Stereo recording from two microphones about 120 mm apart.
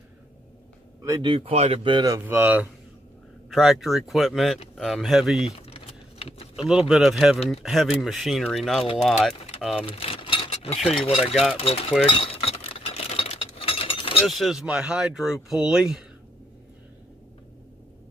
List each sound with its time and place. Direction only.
1.2 s speech: 50° right (ahead or behind)
2.0 s speech: 20° right (ahead or behind)
3.4 s speech: centre (ahead or behind)
5.6 s a sound: 55° left (ahead or behind)
6.5 s speech: 5° right (ahead or behind)
9.8 s speech: 50° left (ahead or behind)
12.1 s a sound: 50° left (ahead or behind)
14.2 s speech: centre (ahead or behind)